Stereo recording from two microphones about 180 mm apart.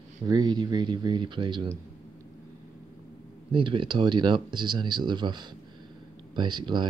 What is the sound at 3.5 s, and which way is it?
Speech, 25° right (ahead or behind).